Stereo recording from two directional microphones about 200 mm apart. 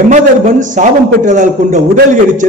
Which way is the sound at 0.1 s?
40° right (ahead or behind).